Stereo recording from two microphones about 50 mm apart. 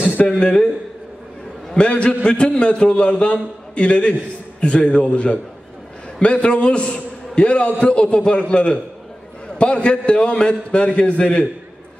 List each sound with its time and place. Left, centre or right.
0.2 s a man's voice: centre
1.7 s a man's voice: centre